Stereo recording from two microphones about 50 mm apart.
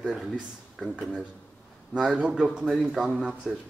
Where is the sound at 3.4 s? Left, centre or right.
Centre.